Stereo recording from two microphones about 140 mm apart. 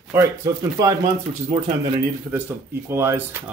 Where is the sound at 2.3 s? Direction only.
15° right (ahead or behind).